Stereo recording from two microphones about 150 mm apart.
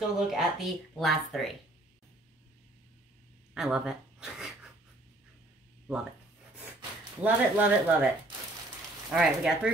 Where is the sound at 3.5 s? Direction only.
5° right (ahead or behind).